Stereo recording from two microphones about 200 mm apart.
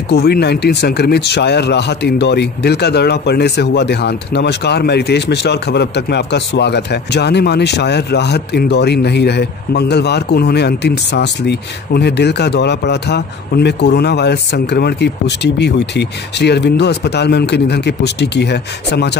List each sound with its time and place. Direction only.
0.1 s speech: 55° left (ahead or behind)